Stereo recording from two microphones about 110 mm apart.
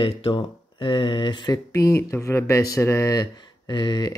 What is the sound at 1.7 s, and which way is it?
Speech, 30° left (ahead or behind).